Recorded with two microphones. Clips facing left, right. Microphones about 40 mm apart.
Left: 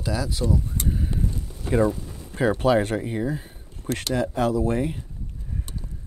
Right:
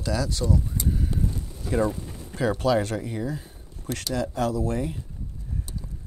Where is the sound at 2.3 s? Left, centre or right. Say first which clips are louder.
Left 3 dB; left.